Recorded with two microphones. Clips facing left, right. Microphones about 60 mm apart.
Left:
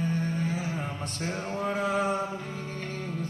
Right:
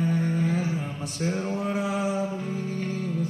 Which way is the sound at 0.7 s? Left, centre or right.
Centre.